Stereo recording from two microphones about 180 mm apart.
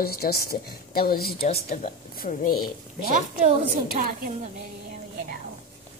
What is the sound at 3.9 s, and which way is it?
Speech, 55° right (ahead or behind).